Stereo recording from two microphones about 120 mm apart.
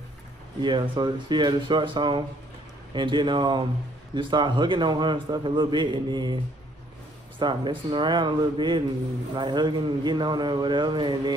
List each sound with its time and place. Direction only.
0.6 s a man's voice: 40° right (ahead or behind)